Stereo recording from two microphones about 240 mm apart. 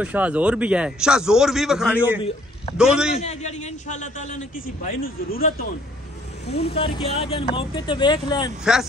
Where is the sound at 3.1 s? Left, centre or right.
Left.